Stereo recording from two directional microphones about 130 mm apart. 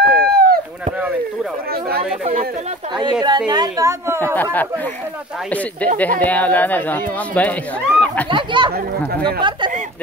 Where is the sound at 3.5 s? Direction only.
30° right (ahead or behind).